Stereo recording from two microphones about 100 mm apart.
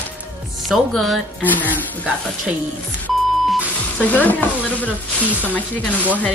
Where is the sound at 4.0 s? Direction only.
15° left (ahead or behind).